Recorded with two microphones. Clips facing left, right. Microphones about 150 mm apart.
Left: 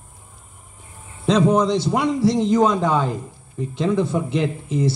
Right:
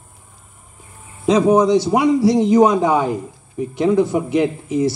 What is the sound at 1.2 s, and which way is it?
A man's voice, 10° right (ahead or behind).